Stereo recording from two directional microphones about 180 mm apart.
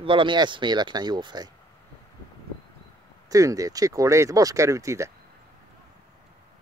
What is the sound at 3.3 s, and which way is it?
Speech, 20° right (ahead or behind).